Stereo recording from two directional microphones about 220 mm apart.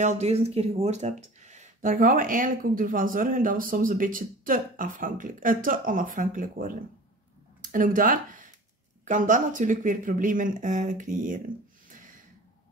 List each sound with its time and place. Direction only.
0.0 s speech: 30° right (ahead or behind)